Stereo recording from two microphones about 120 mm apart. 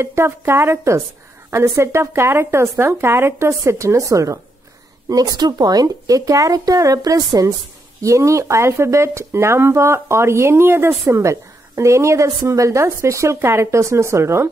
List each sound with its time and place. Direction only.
0.0 s speech: 20° right (ahead or behind)